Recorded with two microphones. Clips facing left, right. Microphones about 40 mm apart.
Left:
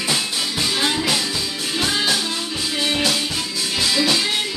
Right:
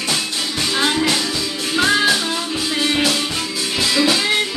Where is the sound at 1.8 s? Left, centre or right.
Right.